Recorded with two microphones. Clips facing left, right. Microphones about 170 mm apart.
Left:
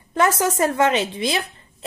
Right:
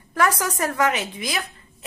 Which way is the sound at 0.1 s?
25° left (ahead or behind).